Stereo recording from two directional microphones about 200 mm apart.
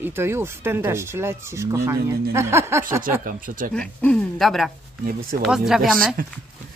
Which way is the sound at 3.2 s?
45° right (ahead or behind).